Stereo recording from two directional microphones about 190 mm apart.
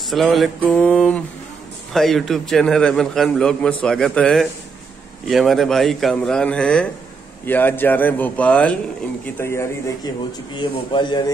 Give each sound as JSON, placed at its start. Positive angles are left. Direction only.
{"t": 0.1, "sound": "a man's voice", "side_deg": 0}